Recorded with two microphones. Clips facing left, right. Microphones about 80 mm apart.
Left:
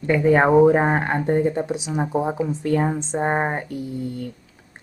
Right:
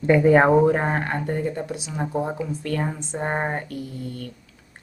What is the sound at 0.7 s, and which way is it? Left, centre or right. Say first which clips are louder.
A woman's voice: left 4 dB; centre.